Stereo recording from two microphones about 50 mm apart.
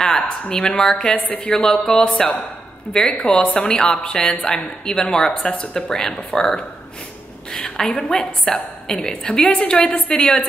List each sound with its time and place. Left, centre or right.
0.1 s a sound: centre
0.8 s a woman's voice: centre
1.1 s a woman's voice: left
8.1 s a woman's voice: centre